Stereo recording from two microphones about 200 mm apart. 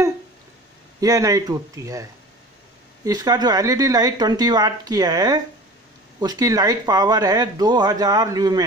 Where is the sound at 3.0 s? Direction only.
20° right (ahead or behind).